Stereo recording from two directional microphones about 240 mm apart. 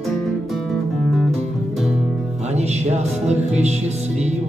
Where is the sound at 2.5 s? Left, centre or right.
Right.